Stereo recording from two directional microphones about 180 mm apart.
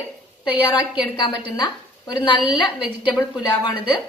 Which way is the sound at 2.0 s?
25° left (ahead or behind).